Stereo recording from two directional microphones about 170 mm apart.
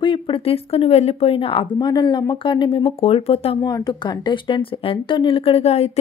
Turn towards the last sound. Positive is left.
turn(degrees=40)  # may be behind; listen again after turning